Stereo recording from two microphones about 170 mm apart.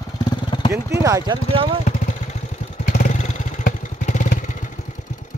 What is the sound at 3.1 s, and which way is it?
Vehicle, 45° left (ahead or behind).